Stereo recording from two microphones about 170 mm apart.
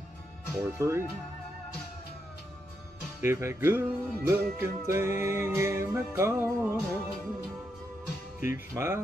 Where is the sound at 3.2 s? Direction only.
15° right (ahead or behind).